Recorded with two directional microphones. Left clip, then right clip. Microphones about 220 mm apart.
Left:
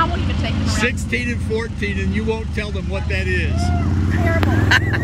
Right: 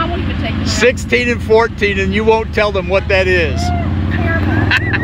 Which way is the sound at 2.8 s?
45° right (ahead or behind).